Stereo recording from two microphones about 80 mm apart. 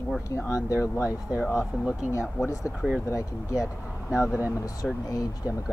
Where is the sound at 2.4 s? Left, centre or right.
Left.